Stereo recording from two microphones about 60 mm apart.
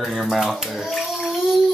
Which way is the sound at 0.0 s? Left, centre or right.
Centre.